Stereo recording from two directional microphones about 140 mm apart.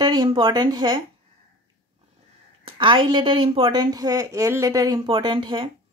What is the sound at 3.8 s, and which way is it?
A woman's voice, 25° right (ahead or behind).